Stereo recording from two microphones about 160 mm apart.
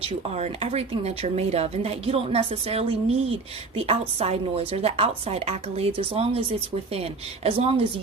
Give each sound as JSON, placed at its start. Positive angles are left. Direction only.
{"t": 0.0, "sound": "speech", "side_deg": -40}